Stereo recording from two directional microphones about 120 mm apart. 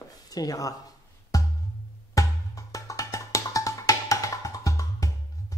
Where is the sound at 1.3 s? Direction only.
30° left (ahead or behind).